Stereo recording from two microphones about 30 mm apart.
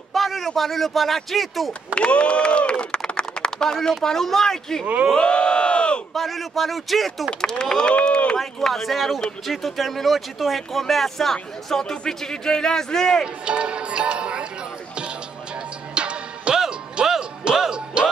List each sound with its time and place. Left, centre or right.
0.1 s speech: centre
2.0 s speech: left
3.1 s a sound: left
4.0 s speech: centre
5.1 s crowd: left
6.1 s speech: centre
7.2 s speech: left
7.7 s speech: left
8.4 s speech: centre
11.7 s speech: left
13.5 s music: right
15.9 s music: right